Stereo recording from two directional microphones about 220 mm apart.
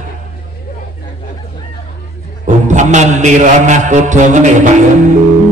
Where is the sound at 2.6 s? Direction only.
35° right (ahead or behind).